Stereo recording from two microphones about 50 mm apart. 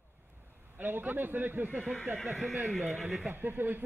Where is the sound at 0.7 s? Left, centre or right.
Right.